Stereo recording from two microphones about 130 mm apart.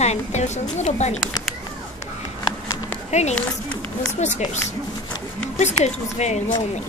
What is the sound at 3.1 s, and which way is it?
A woman's voice, 60° left (ahead or behind).